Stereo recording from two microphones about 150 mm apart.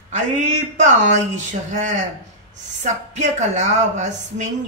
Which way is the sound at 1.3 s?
55° right (ahead or behind).